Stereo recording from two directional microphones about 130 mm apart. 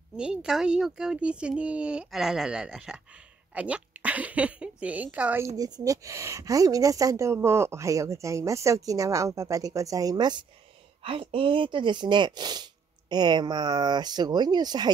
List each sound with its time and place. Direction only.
0.1 s a child's voice: 5° right (ahead or behind)
5.4 s a woman's voice: 25° right (ahead or behind)
11.0 s speech: 45° right (ahead or behind)